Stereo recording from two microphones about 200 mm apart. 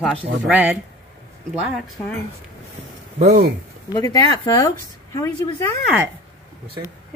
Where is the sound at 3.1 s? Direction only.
35° right (ahead or behind).